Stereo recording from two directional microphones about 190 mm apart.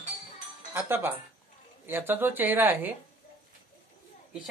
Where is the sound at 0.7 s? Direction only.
10° right (ahead or behind).